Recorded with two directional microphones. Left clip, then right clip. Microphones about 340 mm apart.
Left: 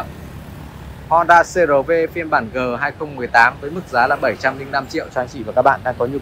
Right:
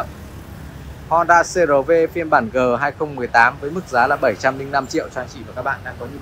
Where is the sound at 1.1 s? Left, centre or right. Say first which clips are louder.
Left 2 dB; centre.